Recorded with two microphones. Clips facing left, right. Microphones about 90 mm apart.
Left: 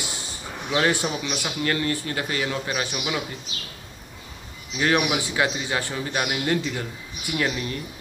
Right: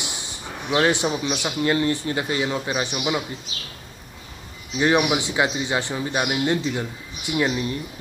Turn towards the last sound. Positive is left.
turn(degrees=-25)  # may be behind; listen again after turning